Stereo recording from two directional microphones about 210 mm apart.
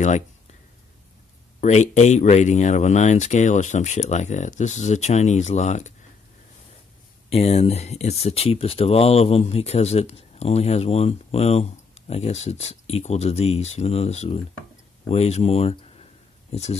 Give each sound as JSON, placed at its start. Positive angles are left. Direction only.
{"t": 1.6, "sound": "speech", "side_deg": 35}
{"t": 7.2, "sound": "speech", "side_deg": 30}